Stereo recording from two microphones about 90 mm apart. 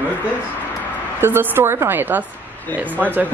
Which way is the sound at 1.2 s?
25° right (ahead or behind).